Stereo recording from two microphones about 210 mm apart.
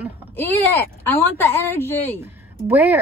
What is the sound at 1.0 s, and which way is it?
Speech, 10° left (ahead or behind).